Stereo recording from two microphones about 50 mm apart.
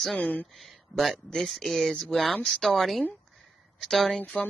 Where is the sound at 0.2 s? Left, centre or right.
Left.